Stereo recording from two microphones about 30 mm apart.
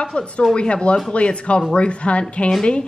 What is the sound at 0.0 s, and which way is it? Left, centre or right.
Speech, left.